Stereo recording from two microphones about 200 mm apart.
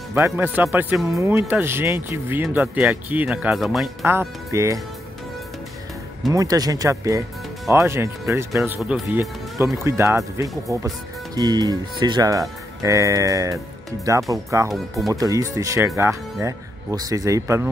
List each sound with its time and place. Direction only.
0.1 s speech: 10° right (ahead or behind)
4.0 s speech: 10° right (ahead or behind)
6.3 s speech: 20° right (ahead or behind)